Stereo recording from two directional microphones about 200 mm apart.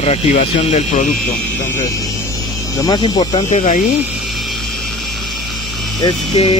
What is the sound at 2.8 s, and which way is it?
Speech, 20° left (ahead or behind).